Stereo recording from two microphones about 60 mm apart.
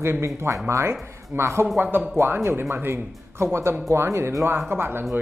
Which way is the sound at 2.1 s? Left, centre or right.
Right.